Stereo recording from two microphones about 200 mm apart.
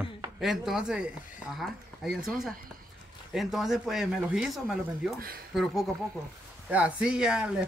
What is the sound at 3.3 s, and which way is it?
Speech, centre (ahead or behind).